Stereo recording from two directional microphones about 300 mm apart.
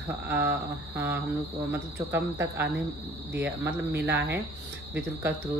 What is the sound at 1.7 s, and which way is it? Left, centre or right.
Speech, centre.